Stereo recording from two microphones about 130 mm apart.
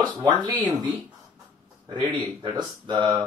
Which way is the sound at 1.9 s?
35° right (ahead or behind).